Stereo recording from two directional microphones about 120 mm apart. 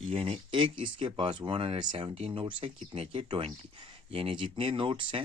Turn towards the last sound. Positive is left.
turn(degrees=-45)  # may be behind; listen again after turning